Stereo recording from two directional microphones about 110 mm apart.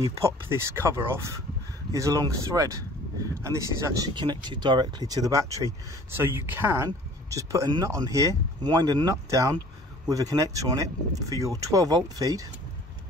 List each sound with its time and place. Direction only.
0.2 s speech: 25° right (ahead or behind)
4.1 s speech: 45° right (ahead or behind)